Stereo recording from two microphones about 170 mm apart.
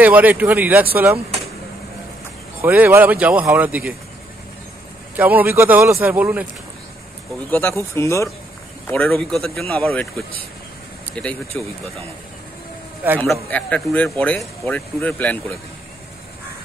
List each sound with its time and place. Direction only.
0.0 s speech: 10° right (ahead or behind)
2.6 s speech: 10° right (ahead or behind)
5.1 s speech: 10° right (ahead or behind)
7.5 s speech: 15° left (ahead or behind)
11.2 s speech: 10° left (ahead or behind)
13.2 s speech: 10° left (ahead or behind)